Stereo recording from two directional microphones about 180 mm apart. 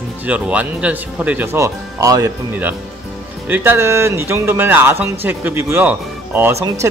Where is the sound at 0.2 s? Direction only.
5° right (ahead or behind).